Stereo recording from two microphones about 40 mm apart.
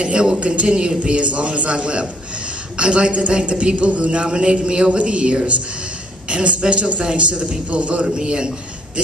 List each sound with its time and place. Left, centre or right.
0.0 s a woman's voice: right
8.2 s a man's voice: right